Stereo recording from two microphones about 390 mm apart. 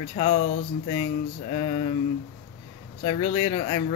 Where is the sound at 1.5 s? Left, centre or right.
Centre.